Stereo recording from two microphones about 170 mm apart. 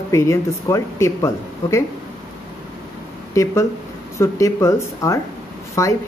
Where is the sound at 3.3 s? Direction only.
15° left (ahead or behind).